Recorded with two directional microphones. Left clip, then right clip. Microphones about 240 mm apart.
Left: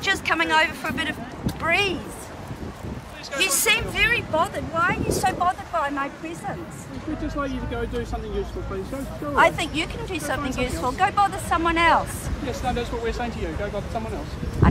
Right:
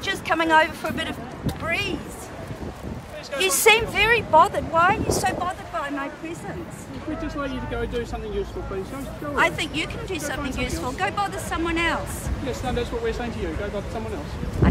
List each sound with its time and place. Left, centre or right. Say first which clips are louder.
0.0 s a woman's voice: left 1 dB; centre
3.5 s speech: right 7 dB; centre
5.4 s speech: left 5 dB; centre
9.3 s speech: left 3 dB; centre
12.4 s speech: left 1 dB; left